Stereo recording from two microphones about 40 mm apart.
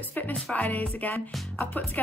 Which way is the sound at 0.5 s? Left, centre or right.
Left.